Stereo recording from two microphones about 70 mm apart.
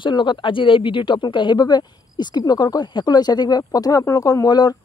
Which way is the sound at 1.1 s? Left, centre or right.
Left.